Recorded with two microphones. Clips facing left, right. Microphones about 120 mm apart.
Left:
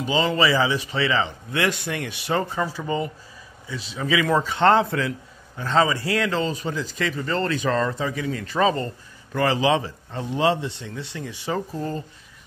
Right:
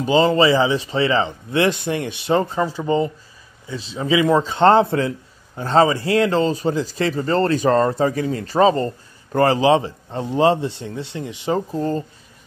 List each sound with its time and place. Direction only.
0.0 s a man's voice: 35° right (ahead or behind)